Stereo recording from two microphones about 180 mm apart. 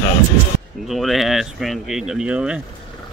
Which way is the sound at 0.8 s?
Centre (ahead or behind).